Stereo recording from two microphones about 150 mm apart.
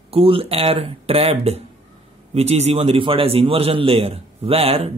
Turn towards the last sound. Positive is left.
turn(degrees=-40)  # may be behind; listen again after turning